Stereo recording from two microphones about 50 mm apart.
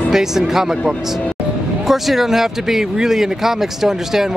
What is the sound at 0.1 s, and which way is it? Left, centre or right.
Speech, centre.